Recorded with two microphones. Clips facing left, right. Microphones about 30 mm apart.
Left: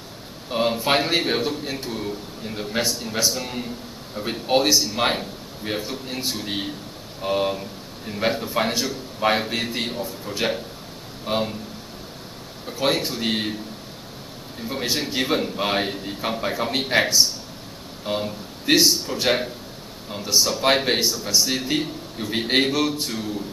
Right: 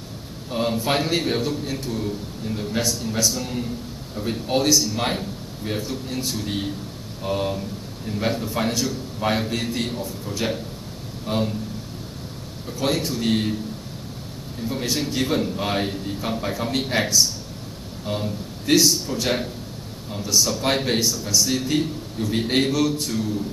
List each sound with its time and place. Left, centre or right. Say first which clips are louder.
0.5 s a man's voice: left 2 dB; left
12.6 s a man's voice: left 1 dB; left
14.6 s a man's voice: even; left